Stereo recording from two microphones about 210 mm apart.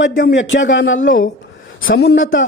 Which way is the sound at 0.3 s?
65° left (ahead or behind).